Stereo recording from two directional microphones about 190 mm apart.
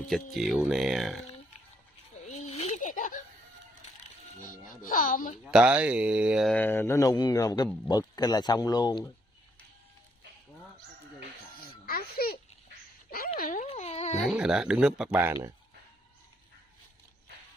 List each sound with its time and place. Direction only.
0.1 s speech: centre (ahead or behind)
2.2 s giggle: 35° left (ahead or behind)
4.4 s speech: 45° left (ahead or behind)
5.4 s speech: 5° right (ahead or behind)
6.5 s a man's voice: 10° left (ahead or behind)
11.8 s a sound: 50° left (ahead or behind)
13.4 s wail: 45° left (ahead or behind)
13.7 s wail: 35° left (ahead or behind)
14.2 s speech: 5° right (ahead or behind)